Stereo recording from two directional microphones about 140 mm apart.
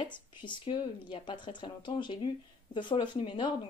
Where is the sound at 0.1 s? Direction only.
35° left (ahead or behind).